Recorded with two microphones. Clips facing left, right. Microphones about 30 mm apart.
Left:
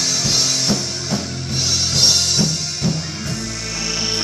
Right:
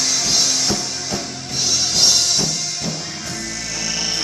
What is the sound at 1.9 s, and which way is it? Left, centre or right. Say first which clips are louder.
Music: left 1 dB; centre.